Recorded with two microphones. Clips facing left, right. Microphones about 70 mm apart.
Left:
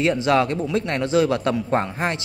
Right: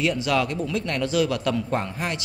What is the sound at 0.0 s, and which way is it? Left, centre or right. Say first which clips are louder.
A man's voice: left 4 dB; left.